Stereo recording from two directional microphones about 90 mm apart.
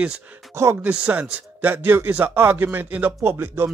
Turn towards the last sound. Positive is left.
turn(degrees=-25)  # may be behind; listen again after turning